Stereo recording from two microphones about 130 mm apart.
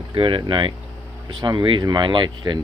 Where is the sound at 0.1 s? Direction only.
40° right (ahead or behind).